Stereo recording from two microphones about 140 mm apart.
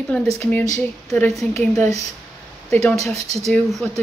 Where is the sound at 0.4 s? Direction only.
15° left (ahead or behind).